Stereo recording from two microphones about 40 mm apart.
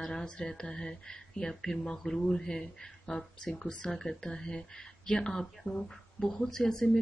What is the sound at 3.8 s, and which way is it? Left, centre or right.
Speech, centre.